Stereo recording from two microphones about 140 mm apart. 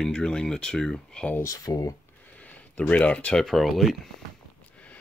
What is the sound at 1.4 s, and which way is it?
Speech, 25° left (ahead or behind).